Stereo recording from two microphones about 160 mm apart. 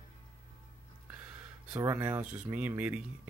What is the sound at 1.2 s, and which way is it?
Speech, 10° right (ahead or behind).